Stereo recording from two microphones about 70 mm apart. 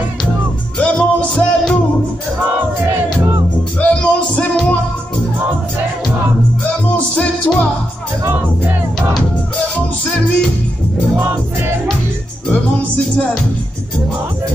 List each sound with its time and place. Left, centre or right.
0.7 s music: centre
1.3 s music: centre
3.8 s music: centre
6.9 s music: centre
12.4 s music: centre